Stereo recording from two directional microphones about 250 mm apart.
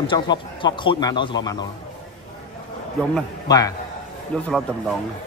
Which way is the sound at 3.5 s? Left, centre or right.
Centre.